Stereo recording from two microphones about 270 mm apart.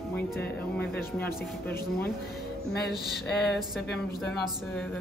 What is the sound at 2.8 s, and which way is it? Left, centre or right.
Speech, centre.